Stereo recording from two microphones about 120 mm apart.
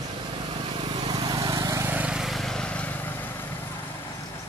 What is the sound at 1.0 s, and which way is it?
Vehicle, 35° right (ahead or behind).